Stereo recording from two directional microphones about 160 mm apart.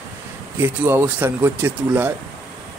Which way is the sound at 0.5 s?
15° right (ahead or behind).